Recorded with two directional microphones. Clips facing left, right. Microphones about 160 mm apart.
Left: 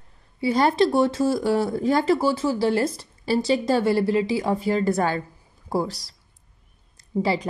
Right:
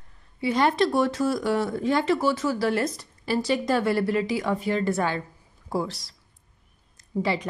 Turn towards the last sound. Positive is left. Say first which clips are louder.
# left 3 dB
turn(degrees=35)  # may be behind; listen again after turning